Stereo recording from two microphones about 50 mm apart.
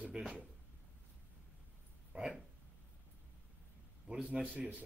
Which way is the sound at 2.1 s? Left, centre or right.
Right.